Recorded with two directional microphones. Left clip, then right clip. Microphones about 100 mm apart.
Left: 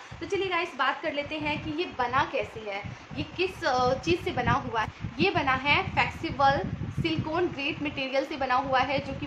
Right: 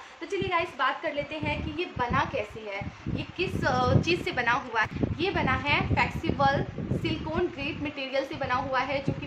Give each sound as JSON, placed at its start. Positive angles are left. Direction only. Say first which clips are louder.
{"t": 0.3, "sound": "a woman's voice", "louder": "even", "side_deg": 15}